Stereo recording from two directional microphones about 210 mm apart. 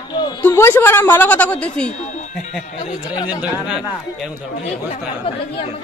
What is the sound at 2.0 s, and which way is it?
Speech, 35° left (ahead or behind).